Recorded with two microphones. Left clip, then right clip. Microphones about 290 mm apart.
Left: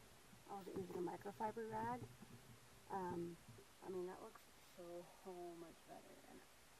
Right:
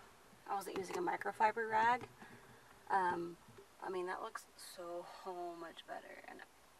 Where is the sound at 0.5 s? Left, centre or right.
Centre.